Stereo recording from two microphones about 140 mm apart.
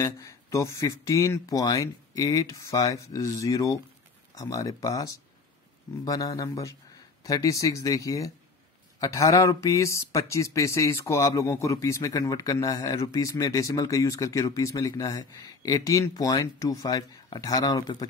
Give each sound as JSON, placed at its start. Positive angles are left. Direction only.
{"t": 0.0, "sound": "speech", "side_deg": 20}